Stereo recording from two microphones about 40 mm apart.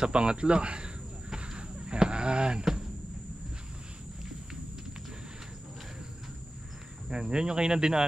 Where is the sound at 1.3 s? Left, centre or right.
Centre.